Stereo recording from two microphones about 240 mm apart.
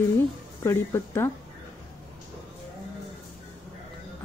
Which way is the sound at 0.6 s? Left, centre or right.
Centre.